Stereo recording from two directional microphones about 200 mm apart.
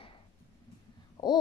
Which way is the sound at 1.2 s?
25° left (ahead or behind).